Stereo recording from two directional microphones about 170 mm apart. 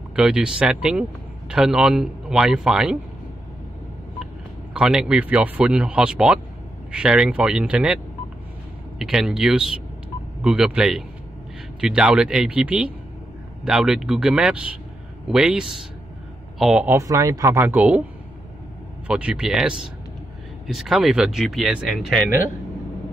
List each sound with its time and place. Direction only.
0.1 s speech: 5° right (ahead or behind)
4.7 s speech: 5° right (ahead or behind)
16.9 s speech: 15° right (ahead or behind)
19.0 s speech: 5° right (ahead or behind)